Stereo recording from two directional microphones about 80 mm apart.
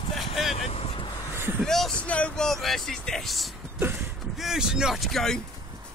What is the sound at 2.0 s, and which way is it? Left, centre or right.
Speech, centre.